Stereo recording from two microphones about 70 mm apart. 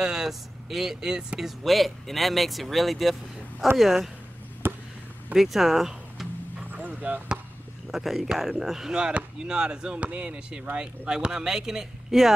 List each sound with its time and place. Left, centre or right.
0.0 s speech: centre
1.6 s speech: centre
4.6 s a sound: right
5.3 s speech: centre
7.0 s speech: right
7.9 s speech: centre